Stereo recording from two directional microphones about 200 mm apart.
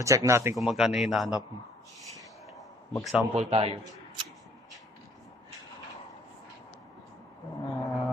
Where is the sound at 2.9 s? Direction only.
Centre (ahead or behind).